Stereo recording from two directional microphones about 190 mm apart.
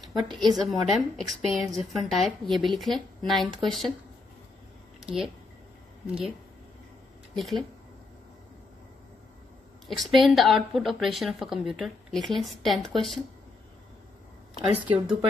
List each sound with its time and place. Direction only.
0.0 s a woman's voice: centre (ahead or behind)
5.0 s speech: centre (ahead or behind)
7.3 s a woman's voice: centre (ahead or behind)
9.8 s a woman's voice: centre (ahead or behind)
14.7 s speech: 25° right (ahead or behind)